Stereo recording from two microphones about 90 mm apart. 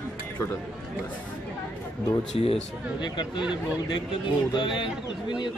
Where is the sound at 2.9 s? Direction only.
55° left (ahead or behind).